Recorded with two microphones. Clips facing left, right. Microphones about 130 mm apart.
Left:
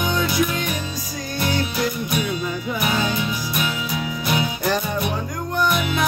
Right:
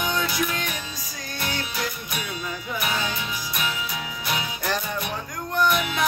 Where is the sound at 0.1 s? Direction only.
5° left (ahead or behind).